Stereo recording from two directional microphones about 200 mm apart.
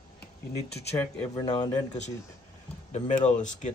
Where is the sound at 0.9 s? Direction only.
10° left (ahead or behind).